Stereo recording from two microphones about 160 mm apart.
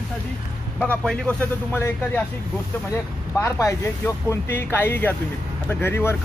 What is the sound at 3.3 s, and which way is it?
Speech, 15° left (ahead or behind).